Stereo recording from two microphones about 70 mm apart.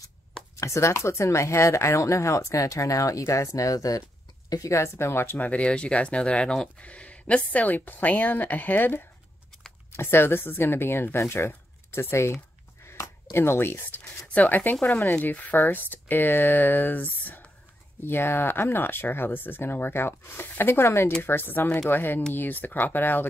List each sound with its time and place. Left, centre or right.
0.6 s speech: left
5.5 s speech: centre; by 12.4 s left
12.8 s a sound: left
14.2 s speech: left